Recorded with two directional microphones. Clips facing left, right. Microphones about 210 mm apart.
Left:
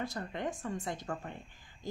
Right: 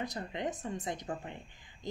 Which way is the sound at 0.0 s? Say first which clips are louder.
Even; 20° right (ahead or behind).